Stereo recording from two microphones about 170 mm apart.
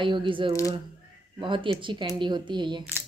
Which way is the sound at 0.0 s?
30° right (ahead or behind).